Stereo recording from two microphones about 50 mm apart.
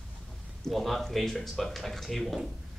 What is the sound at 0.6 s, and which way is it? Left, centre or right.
Speech, centre.